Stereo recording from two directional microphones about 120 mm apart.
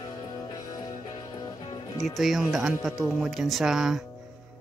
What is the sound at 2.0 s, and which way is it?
Speech, centre (ahead or behind).